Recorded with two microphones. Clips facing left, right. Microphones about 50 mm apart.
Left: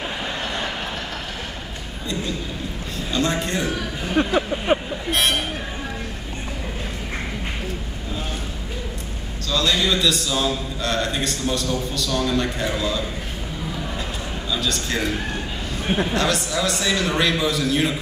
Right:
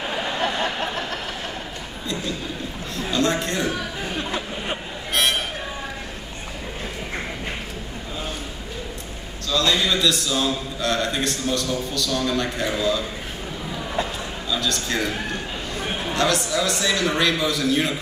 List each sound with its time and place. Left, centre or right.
3.2 s a man's voice: centre
4.3 s a sound: left
9.5 s a man's voice: centre
14.5 s a man's voice: centre
16.1 s a man's voice: centre